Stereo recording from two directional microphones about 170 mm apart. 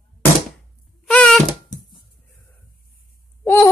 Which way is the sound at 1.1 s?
Centre (ahead or behind).